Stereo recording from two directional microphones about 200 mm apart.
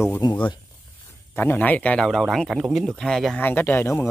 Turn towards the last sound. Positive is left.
turn(degrees=10)  # may be behind; listen again after turning